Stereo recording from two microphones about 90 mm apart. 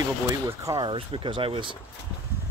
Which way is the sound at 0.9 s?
70° right (ahead or behind).